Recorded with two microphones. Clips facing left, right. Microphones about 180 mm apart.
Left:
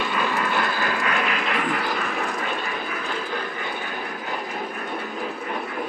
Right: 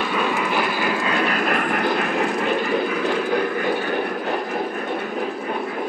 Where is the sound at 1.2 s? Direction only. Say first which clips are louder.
Right 4 dB; 45° right (ahead or behind).